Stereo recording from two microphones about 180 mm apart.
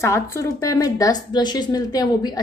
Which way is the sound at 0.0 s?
15° left (ahead or behind).